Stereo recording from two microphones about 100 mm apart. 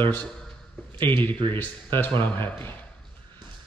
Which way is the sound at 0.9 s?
20° left (ahead or behind).